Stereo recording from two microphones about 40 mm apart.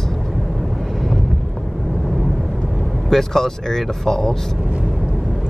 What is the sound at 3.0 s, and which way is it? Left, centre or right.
Speech, centre.